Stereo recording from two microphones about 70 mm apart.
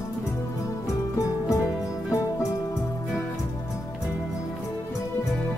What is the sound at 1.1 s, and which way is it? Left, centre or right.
Music, left.